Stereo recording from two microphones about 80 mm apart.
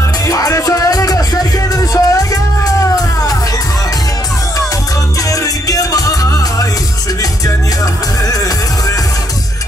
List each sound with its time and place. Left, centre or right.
0.3 s music: left
5.3 s music: left